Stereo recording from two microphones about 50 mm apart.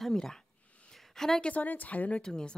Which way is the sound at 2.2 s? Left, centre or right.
Centre.